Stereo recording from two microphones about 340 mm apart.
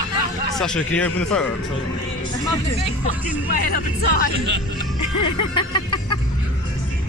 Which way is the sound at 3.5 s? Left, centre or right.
Left.